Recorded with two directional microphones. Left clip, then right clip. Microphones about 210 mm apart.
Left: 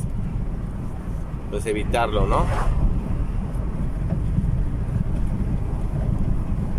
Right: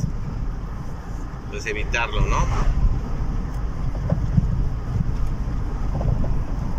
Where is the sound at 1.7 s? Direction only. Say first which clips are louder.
Left 3 dB; 25° left (ahead or behind).